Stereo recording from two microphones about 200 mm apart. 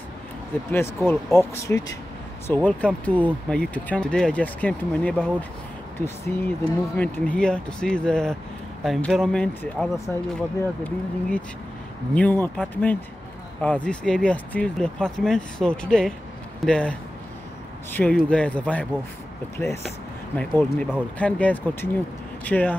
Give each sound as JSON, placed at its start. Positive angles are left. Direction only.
{"t": 0.7, "sound": "speech", "side_deg": 10}
{"t": 17.9, "sound": "speech", "side_deg": 5}